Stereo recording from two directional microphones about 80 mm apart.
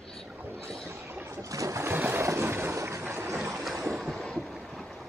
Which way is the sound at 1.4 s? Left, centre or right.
Right.